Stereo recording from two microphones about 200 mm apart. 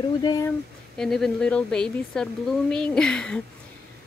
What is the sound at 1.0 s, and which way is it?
Speech, centre (ahead or behind).